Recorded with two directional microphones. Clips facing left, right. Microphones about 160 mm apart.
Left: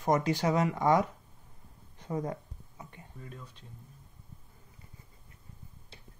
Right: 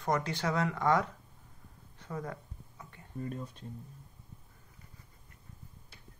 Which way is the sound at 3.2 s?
45° right (ahead or behind).